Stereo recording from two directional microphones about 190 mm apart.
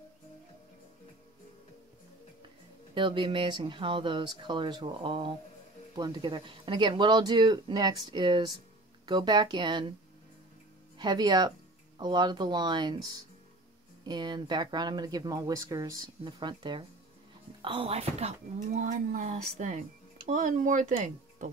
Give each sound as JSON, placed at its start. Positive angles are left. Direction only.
{"t": 2.9, "sound": "speech", "side_deg": -25}
{"t": 11.0, "sound": "speech", "side_deg": -20}